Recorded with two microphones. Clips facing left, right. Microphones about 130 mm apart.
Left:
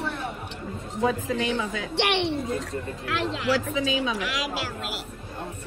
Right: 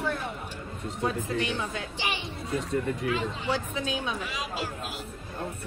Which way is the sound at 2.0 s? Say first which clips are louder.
Left 12 dB; 75° left (ahead or behind).